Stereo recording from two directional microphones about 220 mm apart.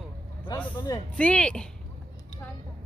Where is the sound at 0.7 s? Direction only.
20° left (ahead or behind).